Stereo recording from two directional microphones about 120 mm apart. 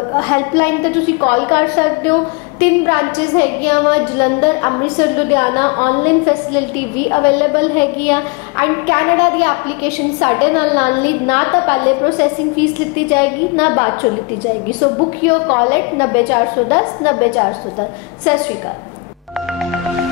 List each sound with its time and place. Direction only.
0.1 s a woman's voice: 25° left (ahead or behind)